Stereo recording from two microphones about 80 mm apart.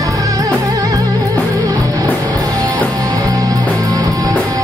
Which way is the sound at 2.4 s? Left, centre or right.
Right.